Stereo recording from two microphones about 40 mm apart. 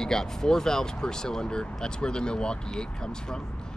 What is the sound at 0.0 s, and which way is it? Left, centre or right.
Speech, centre.